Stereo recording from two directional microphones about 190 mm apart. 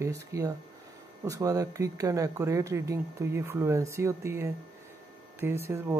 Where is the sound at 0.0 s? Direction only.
15° right (ahead or behind).